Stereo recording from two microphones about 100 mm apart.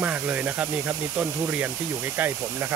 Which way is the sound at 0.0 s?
15° right (ahead or behind).